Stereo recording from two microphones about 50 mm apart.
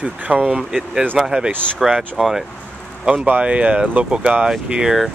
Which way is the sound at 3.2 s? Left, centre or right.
Right.